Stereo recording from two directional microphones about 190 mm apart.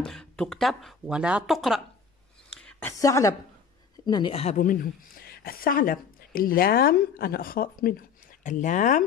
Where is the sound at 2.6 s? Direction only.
10° left (ahead or behind); by 4.5 s 30° left (ahead or behind).